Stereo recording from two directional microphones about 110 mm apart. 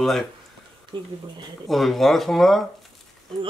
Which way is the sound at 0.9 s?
45° right (ahead or behind).